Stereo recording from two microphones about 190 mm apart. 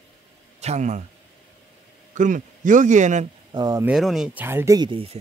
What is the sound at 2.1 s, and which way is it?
Speech, 40° right (ahead or behind).